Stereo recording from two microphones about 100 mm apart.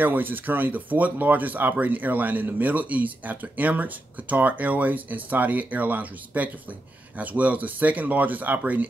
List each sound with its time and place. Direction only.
0.0 s speech: 20° right (ahead or behind)